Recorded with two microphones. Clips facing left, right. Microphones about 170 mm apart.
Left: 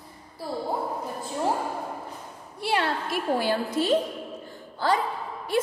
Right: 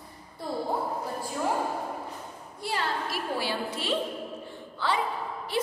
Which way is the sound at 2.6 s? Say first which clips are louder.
Left 5 dB; 65° left (ahead or behind).